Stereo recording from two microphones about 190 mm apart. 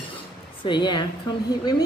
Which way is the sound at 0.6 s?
25° left (ahead or behind).